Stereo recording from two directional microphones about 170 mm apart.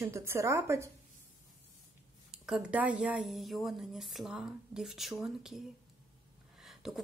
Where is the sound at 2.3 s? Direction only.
5° right (ahead or behind).